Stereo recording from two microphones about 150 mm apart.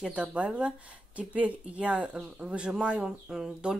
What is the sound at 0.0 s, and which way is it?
Speech, 5° right (ahead or behind).